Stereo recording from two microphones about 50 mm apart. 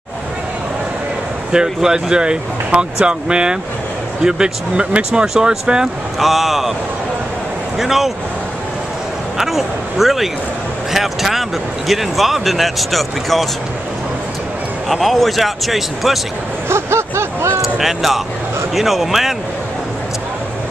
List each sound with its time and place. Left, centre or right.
1.5 s speech: centre
6.1 s speech: centre
7.7 s speech: centre
9.4 s speech: centre
10.9 s vehicle: centre
11.9 s speech: centre
14.9 s speech: centre
16.6 s a sound: right
17.7 s speech: centre